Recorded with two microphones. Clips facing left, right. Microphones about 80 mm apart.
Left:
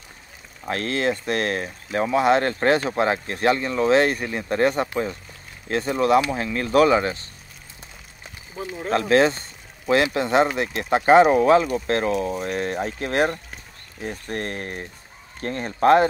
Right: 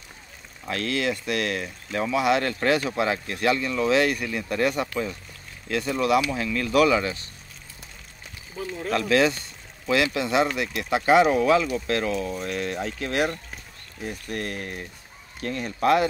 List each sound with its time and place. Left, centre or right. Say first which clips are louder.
0.7 s speech: left 3 dB; left
8.8 s speech: left 3 dB; left